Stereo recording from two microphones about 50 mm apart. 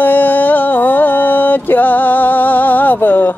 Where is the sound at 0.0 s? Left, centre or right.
Left.